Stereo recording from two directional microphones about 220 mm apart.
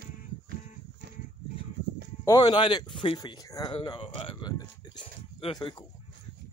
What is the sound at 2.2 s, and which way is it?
Speech, 20° left (ahead or behind).